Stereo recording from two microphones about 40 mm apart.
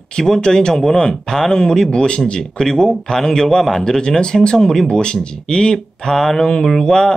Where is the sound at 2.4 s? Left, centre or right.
Centre.